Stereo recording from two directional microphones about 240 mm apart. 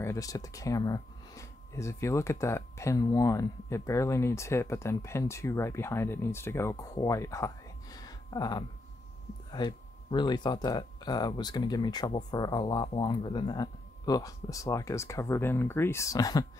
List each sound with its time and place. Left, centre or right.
0.0 s speech: centre